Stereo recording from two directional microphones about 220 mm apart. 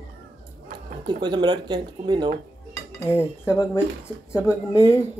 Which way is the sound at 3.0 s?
10° left (ahead or behind).